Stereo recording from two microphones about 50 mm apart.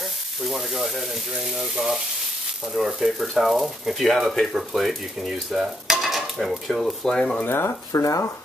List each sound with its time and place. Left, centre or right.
0.5 s speech: centre
7.1 s speech: centre
7.4 s speech: left
7.9 s speech: left